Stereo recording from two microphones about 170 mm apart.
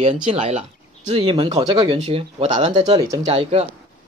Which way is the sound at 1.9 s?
35° right (ahead or behind).